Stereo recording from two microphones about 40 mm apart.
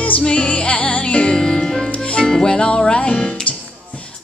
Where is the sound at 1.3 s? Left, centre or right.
Centre.